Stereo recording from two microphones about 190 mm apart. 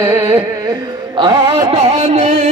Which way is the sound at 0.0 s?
15° right (ahead or behind).